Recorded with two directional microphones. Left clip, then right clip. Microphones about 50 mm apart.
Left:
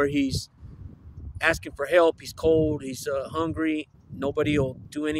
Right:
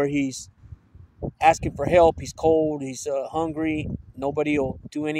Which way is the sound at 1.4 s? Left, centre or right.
Left.